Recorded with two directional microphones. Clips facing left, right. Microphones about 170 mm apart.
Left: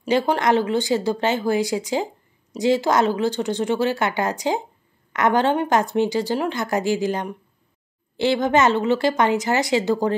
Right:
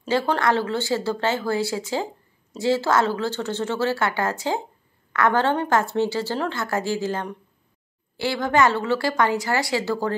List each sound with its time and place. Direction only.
0.0 s a woman's voice: 15° left (ahead or behind)